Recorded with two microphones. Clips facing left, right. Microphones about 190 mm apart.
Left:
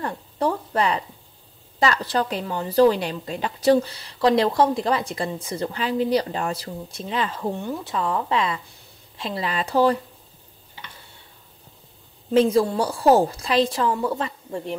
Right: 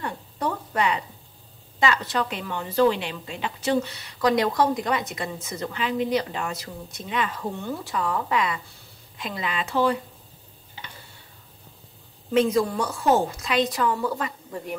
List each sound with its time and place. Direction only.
0.0 s a woman's voice: 35° left (ahead or behind)
12.3 s a woman's voice: 30° left (ahead or behind)